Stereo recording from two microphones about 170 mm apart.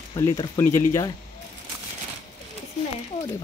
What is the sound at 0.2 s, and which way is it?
Speech, 20° left (ahead or behind).